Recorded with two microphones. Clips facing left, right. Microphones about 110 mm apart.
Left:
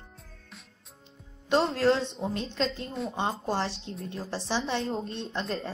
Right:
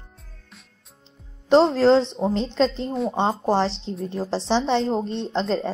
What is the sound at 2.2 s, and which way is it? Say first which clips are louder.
A woman's voice: right 9 dB; 30° right (ahead or behind).